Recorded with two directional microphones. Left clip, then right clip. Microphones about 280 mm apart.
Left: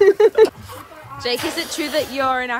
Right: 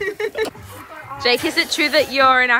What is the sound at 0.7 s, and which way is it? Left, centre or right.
Speech, centre.